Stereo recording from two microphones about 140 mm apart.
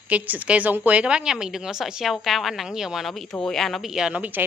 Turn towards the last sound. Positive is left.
turn(degrees=-5)  # may be behind; listen again after turning